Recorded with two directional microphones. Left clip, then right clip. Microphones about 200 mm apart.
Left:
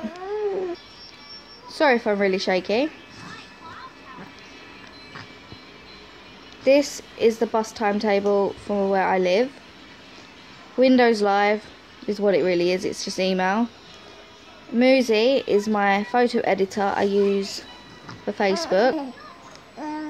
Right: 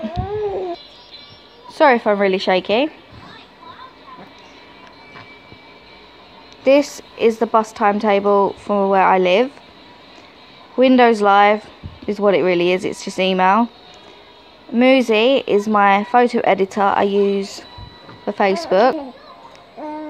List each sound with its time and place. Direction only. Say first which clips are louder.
1.8 s a woman's voice: right 6 dB; 15° right (ahead or behind)
6.6 s a woman's voice: right 4 dB; 20° right (ahead or behind)
10.8 s a woman's voice: right 5 dB; 20° right (ahead or behind)
14.8 s a woman's voice: right 4 dB; 20° right (ahead or behind)